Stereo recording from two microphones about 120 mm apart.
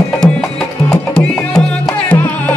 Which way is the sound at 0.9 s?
5° left (ahead or behind).